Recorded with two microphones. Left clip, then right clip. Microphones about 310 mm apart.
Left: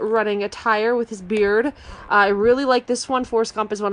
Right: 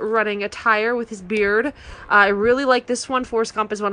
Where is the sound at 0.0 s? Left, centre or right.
Centre.